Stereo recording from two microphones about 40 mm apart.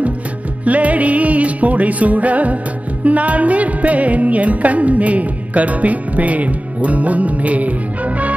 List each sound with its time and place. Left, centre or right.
0.7 s music: right